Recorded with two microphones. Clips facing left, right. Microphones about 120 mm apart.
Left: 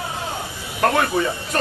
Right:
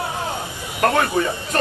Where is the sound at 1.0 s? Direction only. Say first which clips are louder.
Even; 5° left (ahead or behind).